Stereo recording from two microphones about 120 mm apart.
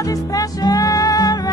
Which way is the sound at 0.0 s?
30° left (ahead or behind).